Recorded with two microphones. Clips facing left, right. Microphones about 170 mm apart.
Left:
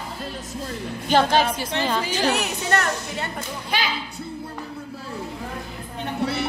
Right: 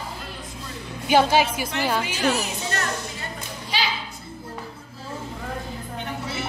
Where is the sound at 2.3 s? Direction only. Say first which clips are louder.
Left 3 dB; 65° left (ahead or behind).